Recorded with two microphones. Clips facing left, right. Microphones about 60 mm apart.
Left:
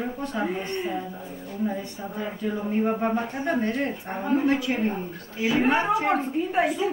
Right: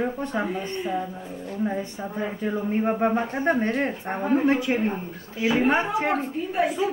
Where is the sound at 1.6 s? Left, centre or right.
Right.